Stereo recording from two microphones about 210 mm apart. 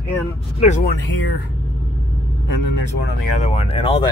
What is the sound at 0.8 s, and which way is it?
Speech, 60° left (ahead or behind).